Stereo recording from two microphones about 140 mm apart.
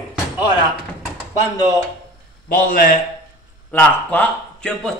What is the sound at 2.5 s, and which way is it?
Speech, 80° left.